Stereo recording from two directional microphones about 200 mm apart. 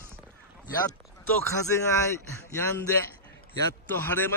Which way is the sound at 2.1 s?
10° left (ahead or behind).